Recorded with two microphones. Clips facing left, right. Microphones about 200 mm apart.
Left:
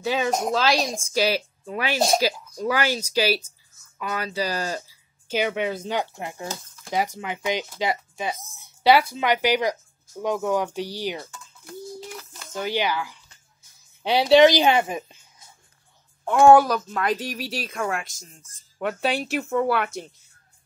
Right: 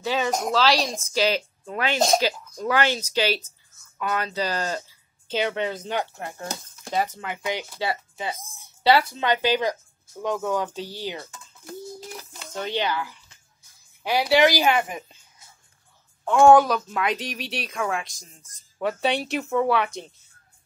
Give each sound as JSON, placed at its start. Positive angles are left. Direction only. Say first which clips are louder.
{"t": 0.7, "sound": "speech", "louder": "even", "side_deg": 10}
{"t": 12.3, "sound": "a woman's voice", "louder": "left 2 dB", "side_deg": 5}
{"t": 16.3, "sound": "a woman's voice", "louder": "even", "side_deg": 5}